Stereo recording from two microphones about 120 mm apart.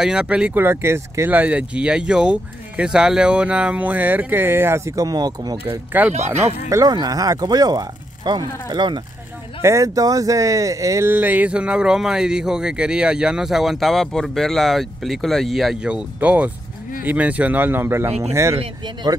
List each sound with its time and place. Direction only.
0.0 s speech: 5° right (ahead or behind)
0.6 s speech: 20° right (ahead or behind); by 9.0 s 40° right (ahead or behind)
9.6 s speech: 25° right (ahead or behind)